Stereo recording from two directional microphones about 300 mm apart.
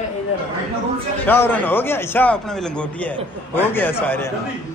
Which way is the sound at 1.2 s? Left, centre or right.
Centre.